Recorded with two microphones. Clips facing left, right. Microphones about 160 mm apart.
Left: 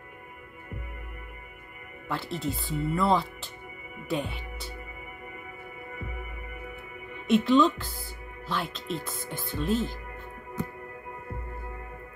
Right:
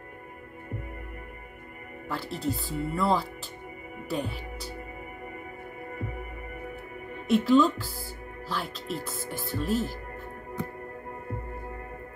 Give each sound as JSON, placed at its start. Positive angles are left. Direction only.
{"t": 2.0, "sound": "speech", "side_deg": 0}
{"t": 5.9, "sound": "music", "side_deg": -40}
{"t": 7.2, "sound": "speech", "side_deg": 0}